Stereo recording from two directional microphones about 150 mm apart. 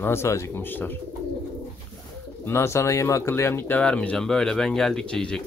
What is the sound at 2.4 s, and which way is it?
Speech, 15° left (ahead or behind).